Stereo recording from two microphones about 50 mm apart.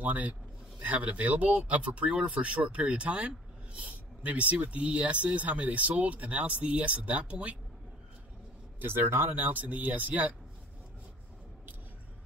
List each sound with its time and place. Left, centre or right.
0.0 s speech: right
8.7 s a man's voice: right
9.3 s speech: right